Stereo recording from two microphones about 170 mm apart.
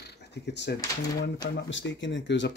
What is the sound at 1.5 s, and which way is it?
Speech, 90° left.